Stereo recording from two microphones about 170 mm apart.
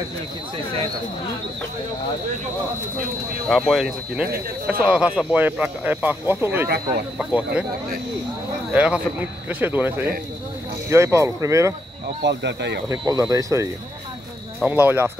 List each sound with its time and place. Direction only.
3.4 s speech: centre (ahead or behind)
8.7 s speech: 5° right (ahead or behind)
12.2 s speech: 90° right
12.9 s speech: 20° right (ahead or behind)